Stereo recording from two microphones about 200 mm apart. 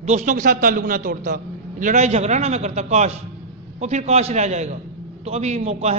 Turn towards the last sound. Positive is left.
turn(degrees=-35)  # may be behind; listen again after turning